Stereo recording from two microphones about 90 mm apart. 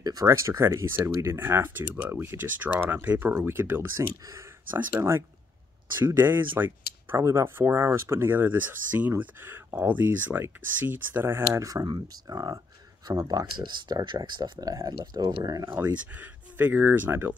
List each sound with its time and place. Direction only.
0.0 s speech: 45° right (ahead or behind); by 11.7 s 30° right (ahead or behind)
11.7 s speech: 50° right (ahead or behind)
15.6 s speech: 20° right (ahead or behind)